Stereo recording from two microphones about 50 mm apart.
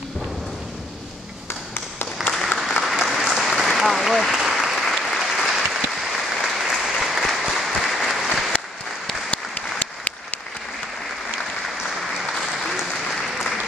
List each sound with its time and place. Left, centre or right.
2.2 s applause: centre
9.3 s applause: left
12.4 s applause: centre